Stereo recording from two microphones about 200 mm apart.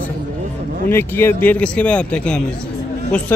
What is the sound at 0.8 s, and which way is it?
A man's voice, 10° left (ahead or behind).